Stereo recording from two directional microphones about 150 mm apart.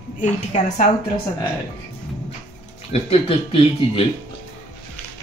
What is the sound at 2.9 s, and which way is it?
Speech, 40° left (ahead or behind).